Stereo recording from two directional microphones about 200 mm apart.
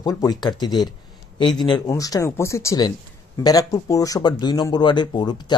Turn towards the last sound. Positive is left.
turn(degrees=20)  # may be behind; listen again after turning